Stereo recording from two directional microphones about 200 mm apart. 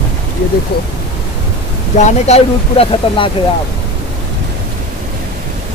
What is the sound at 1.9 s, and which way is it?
Speech, 35° left (ahead or behind).